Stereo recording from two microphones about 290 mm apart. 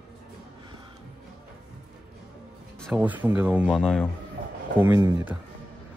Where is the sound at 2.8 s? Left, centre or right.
Centre.